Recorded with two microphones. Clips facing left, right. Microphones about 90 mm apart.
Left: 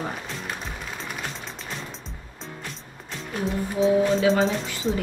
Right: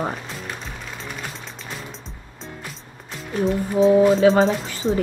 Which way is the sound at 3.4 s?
35° right (ahead or behind).